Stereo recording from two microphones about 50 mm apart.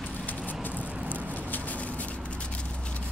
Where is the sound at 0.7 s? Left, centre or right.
Right.